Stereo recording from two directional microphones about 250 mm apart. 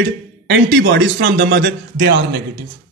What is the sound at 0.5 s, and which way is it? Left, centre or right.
A man's voice, right.